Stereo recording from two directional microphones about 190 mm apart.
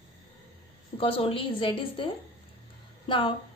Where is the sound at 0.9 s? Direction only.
30° left (ahead or behind).